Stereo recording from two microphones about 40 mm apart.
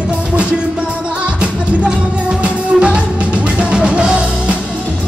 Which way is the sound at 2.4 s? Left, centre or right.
Right.